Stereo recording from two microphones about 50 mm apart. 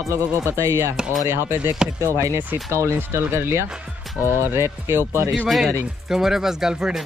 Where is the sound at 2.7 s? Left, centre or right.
Right.